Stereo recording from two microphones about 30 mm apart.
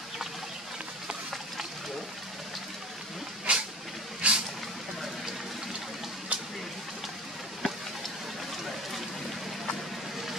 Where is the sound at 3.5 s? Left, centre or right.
Right.